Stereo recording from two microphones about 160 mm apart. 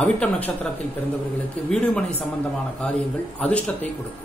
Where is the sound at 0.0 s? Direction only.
5° left (ahead or behind).